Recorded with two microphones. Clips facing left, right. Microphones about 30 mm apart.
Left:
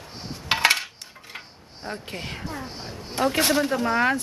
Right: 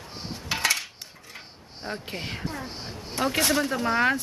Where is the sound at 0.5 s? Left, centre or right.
Left.